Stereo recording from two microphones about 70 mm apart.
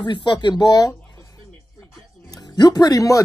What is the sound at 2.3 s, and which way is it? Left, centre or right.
Speech, left.